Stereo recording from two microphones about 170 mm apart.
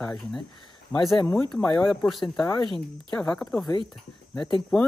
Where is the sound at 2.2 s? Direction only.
25° left (ahead or behind).